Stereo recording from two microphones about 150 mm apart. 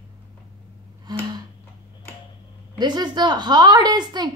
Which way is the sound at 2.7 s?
30° right (ahead or behind).